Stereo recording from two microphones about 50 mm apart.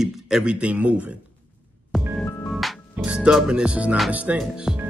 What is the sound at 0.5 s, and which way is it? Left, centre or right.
Speech, right.